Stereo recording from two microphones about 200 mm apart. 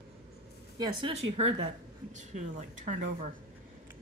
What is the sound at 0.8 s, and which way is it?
A woman's voice, 25° right (ahead or behind).